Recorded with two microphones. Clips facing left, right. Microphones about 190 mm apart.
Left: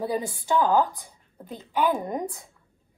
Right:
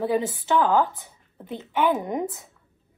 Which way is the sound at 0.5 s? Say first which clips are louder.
Right 1 dB; 15° left (ahead or behind).